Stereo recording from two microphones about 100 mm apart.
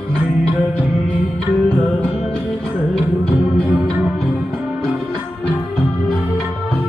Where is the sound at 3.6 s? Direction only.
25° right (ahead or behind).